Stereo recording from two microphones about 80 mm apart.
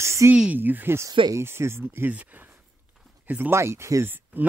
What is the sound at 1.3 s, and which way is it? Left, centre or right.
Speech, right.